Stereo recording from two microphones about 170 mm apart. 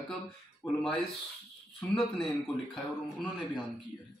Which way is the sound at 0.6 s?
Centre (ahead or behind).